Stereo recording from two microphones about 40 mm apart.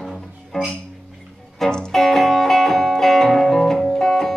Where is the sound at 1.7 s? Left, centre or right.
Centre.